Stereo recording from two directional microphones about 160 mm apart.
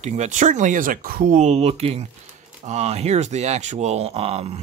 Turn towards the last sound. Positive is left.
turn(degrees=-40)  # may be behind; listen again after turning